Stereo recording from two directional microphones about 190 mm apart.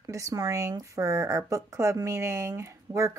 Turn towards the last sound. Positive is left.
turn(degrees=-15)  # may be behind; listen again after turning